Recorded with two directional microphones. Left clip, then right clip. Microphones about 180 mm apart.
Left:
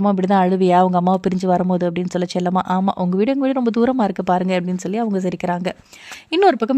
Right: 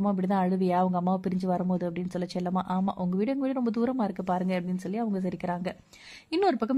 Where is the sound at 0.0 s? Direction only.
35° left (ahead or behind).